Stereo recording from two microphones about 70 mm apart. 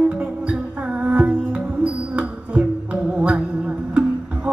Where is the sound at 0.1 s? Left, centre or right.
Centre.